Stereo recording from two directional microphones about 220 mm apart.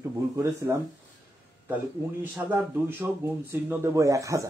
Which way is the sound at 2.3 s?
10° right (ahead or behind).